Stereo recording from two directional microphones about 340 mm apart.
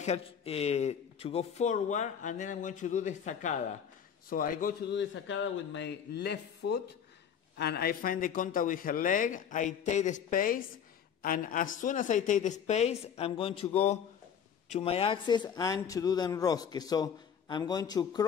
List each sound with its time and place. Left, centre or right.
0.0 s a man's voice: centre